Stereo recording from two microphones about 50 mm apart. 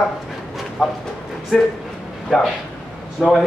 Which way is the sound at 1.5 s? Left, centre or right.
Centre.